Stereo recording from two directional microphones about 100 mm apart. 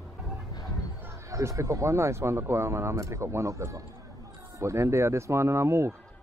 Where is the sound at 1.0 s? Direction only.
30° right (ahead or behind).